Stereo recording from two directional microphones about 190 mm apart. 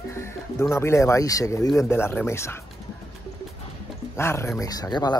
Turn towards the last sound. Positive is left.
turn(degrees=20)  # may be behind; listen again after turning